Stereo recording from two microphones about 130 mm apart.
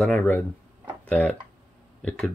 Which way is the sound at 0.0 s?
10° left (ahead or behind).